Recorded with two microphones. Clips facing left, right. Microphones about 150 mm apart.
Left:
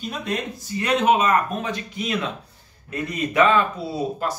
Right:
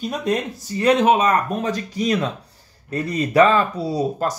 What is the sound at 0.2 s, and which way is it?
Speech, 35° right (ahead or behind).